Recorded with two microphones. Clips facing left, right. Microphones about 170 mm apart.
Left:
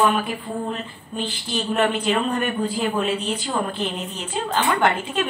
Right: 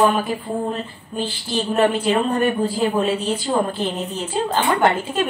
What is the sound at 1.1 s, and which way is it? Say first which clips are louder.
A woman's voice: right 3 dB; 30° right (ahead or behind).